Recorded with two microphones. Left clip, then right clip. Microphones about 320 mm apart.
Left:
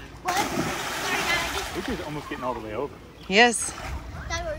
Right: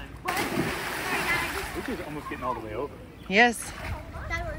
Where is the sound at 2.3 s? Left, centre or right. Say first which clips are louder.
Left 2 dB; left.